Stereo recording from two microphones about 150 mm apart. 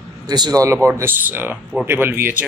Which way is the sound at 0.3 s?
25° right (ahead or behind).